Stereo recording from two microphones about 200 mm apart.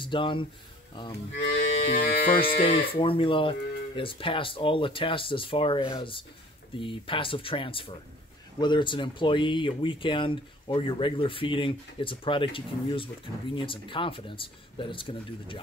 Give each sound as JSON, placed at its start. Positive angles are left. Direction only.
{"t": 0.0, "sound": "speech", "side_deg": 25}
{"t": 2.0, "sound": "speech", "side_deg": 45}
{"t": 2.6, "sound": "speech", "side_deg": 25}